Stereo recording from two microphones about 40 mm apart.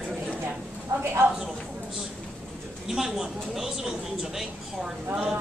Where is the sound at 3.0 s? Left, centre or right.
Centre.